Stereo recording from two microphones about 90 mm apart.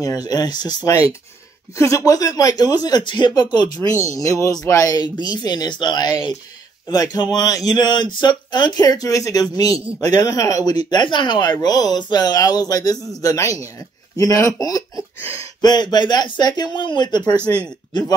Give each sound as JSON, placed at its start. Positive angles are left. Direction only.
{"t": 0.0, "sound": "speech", "side_deg": 45}
{"t": 3.9, "sound": "speech", "side_deg": 35}
{"t": 17.4, "sound": "speech", "side_deg": -25}